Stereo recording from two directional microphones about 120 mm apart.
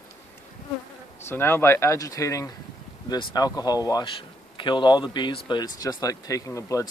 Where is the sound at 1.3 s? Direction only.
20° left (ahead or behind).